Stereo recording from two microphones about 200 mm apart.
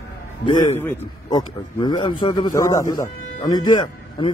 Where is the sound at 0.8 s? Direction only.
15° left (ahead or behind).